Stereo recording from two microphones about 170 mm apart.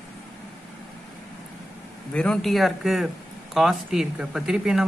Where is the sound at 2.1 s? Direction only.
5° left (ahead or behind).